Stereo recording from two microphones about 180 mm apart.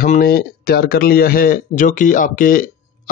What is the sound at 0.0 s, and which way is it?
Speech, 55° left (ahead or behind).